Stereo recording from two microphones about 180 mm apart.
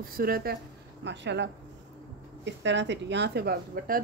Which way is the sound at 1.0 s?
75° right (ahead or behind).